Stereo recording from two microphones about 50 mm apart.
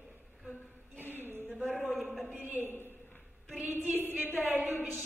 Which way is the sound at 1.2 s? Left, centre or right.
Right.